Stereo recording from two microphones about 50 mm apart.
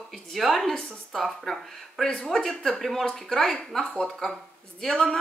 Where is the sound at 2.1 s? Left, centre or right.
Centre.